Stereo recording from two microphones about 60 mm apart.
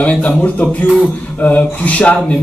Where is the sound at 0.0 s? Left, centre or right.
Left.